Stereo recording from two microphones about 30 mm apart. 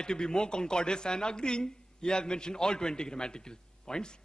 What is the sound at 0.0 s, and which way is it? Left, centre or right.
Speech, left.